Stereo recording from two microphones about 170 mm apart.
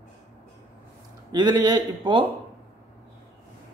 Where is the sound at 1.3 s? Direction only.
25° right (ahead or behind).